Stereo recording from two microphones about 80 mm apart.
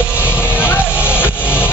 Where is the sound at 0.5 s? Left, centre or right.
Left.